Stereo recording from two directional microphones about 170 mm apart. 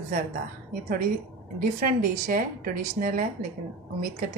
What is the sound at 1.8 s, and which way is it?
Speech, 55° right (ahead or behind).